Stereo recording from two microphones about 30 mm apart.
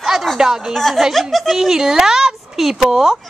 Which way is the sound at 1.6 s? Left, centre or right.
Centre.